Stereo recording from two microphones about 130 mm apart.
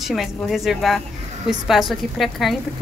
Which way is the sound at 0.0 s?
Centre (ahead or behind).